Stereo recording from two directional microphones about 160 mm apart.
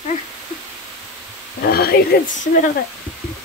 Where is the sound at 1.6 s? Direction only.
70° left (ahead or behind); by 2.7 s 50° left (ahead or behind).